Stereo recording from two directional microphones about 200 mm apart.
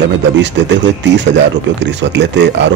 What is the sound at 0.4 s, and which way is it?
Speech, 60° right (ahead or behind).